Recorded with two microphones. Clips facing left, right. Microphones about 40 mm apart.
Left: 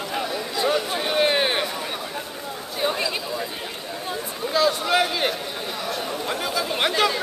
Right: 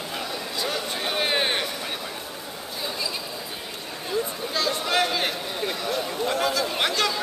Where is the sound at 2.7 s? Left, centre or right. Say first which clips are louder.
Left 7 dB; left.